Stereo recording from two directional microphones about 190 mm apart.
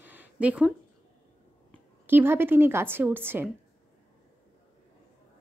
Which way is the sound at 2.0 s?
10° right (ahead or behind).